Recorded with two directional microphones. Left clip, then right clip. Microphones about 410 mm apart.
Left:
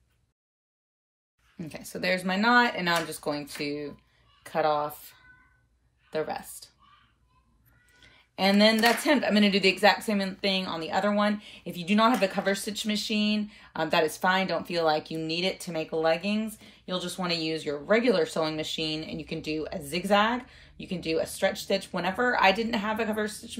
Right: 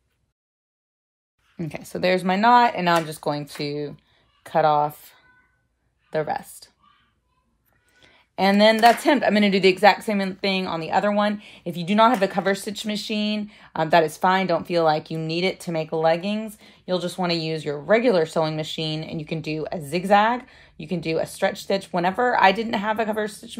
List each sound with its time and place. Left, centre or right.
1.6 s speech: centre
7.9 s speech: centre